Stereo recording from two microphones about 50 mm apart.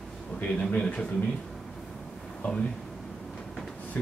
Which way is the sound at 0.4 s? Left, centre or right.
Left.